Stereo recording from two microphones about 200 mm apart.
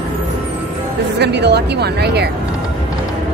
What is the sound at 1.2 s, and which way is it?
A woman's voice, 55° right (ahead or behind).